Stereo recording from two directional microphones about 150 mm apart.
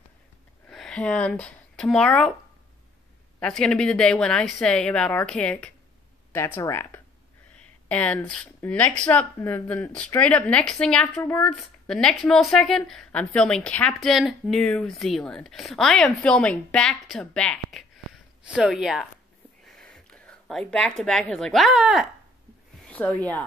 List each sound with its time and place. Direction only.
0.7 s speech: 5° left (ahead or behind)
3.3 s a woman's voice: 5° left (ahead or behind)
22.8 s speech: 10° left (ahead or behind)